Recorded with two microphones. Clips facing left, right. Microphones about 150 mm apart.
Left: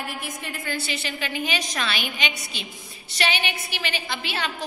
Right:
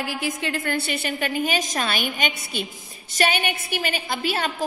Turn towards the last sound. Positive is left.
turn(degrees=-45)  # may be behind; listen again after turning